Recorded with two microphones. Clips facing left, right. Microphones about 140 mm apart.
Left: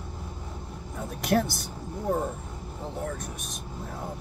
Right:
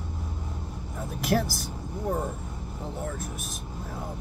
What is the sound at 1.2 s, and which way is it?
Speech, centre (ahead or behind).